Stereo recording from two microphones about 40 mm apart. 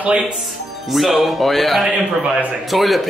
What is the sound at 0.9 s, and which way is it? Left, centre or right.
Speech, centre.